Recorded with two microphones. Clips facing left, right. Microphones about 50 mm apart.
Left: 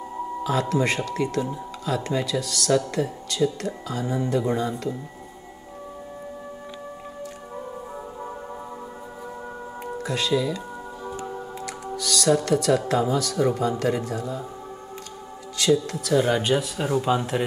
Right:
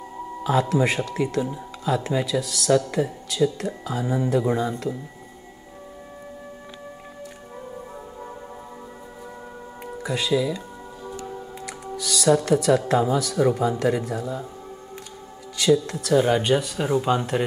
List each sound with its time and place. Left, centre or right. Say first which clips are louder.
0.4 s speech: right 3 dB; centre
9.9 s speech: right 1 dB; centre
11.1 s music: left 1 dB; left
11.6 s speech: left 1 dB; centre
15.5 s speech: right 2 dB; centre